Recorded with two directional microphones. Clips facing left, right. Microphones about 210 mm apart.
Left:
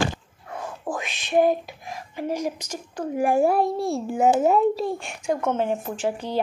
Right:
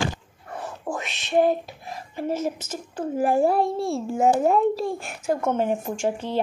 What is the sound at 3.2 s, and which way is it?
Speech, 15° left (ahead or behind).